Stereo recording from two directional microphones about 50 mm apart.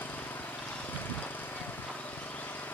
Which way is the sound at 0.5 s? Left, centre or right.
Left.